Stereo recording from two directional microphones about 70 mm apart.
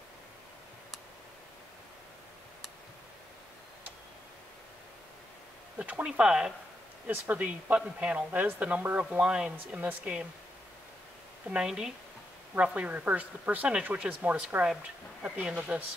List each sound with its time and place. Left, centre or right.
5.8 s speech: right
6.0 s speech: centre
11.5 s speech: centre